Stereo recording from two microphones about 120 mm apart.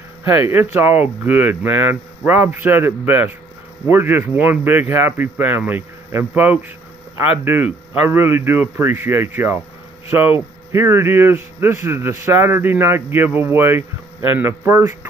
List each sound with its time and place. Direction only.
0.2 s a man's voice: 20° right (ahead or behind)